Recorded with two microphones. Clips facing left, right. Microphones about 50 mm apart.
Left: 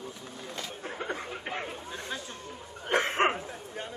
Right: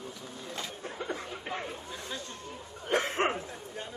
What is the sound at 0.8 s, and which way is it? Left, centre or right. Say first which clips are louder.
Speech: left 3 dB; left.